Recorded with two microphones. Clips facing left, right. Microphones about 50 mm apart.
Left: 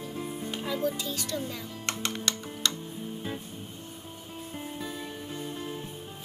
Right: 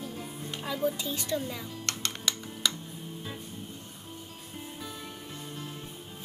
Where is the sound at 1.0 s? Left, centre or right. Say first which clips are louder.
Right 1 dB; right.